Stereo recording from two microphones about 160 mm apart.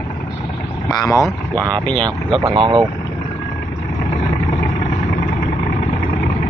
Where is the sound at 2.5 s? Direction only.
30° right (ahead or behind).